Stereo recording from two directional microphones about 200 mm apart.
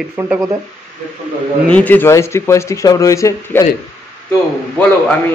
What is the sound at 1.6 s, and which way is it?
A man's voice, 5° left (ahead or behind).